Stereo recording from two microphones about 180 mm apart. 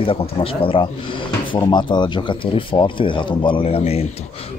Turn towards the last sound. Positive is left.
turn(degrees=35)  # may be behind; listen again after turning